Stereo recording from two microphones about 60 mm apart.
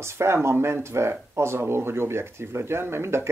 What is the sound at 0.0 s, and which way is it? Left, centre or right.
Speech, right.